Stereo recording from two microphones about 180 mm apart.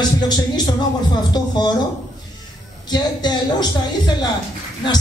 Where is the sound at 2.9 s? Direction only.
25° left (ahead or behind).